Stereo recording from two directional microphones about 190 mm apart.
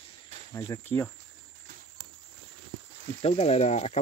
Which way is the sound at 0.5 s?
15° left (ahead or behind).